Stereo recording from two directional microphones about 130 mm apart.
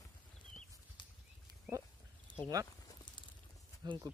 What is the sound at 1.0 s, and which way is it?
Horse, 40° left (ahead or behind).